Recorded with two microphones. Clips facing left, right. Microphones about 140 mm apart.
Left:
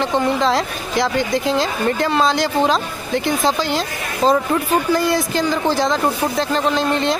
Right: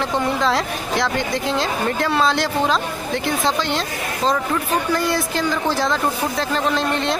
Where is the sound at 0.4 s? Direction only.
Centre (ahead or behind).